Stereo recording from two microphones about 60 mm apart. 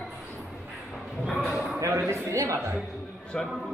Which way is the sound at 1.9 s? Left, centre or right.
Right.